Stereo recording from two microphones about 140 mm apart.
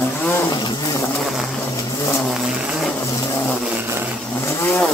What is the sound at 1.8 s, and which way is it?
Vehicle, 20° left (ahead or behind).